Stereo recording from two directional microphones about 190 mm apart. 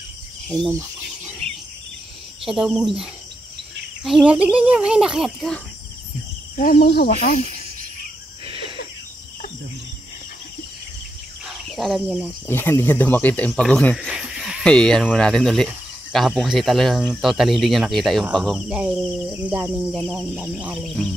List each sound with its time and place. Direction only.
0.5 s speech: 5° left (ahead or behind)
2.4 s speech: 5° right (ahead or behind)
6.5 s speech: 45° left (ahead or behind)
11.4 s cricket: centre (ahead or behind)
12.4 s speech: 10° left (ahead or behind); by 20.9 s 5° right (ahead or behind)